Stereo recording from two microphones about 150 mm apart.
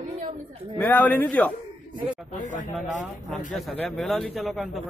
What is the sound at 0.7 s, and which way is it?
Speech, 10° left (ahead or behind).